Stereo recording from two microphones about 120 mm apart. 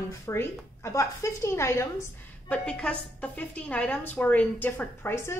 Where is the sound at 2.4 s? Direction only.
10° left (ahead or behind).